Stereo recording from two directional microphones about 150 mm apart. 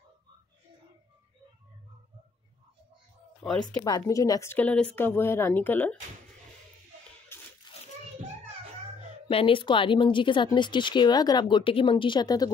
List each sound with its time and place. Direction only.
3.6 s a woman's voice: 25° left (ahead or behind)
7.3 s a sound: 15° left (ahead or behind)
7.7 s children playing: 30° left (ahead or behind)
9.3 s speech: 35° left (ahead or behind)